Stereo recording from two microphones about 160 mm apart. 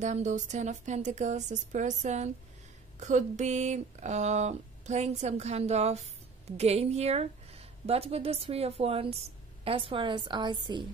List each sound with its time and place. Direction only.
0.0 s a woman's voice: 45° right (ahead or behind); by 10.9 s 30° right (ahead or behind)